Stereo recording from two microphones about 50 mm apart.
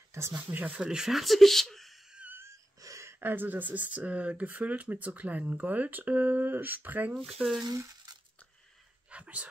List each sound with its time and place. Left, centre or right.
0.1 s speech: right
0.5 s speech: right
0.8 s speech: centre
1.1 s speech: centre
2.4 s wheeze: right
3.2 s speech: right
7.2 s speech: centre
9.1 s speech: right